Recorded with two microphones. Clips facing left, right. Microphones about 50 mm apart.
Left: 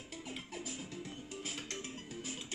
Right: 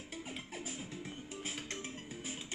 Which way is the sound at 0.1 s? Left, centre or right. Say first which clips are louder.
Even; right.